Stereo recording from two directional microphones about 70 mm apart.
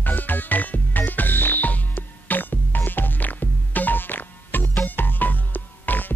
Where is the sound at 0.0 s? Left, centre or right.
Left.